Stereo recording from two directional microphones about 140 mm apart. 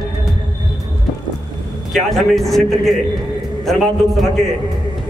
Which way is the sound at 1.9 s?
Centre (ahead or behind).